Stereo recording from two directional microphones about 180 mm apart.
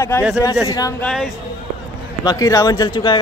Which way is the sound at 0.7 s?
20° left (ahead or behind).